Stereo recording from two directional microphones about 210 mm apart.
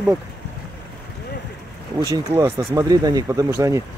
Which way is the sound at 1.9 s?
15° right (ahead or behind).